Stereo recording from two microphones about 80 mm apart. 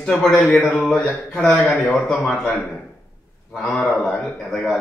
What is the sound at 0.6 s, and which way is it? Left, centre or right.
Speech, centre.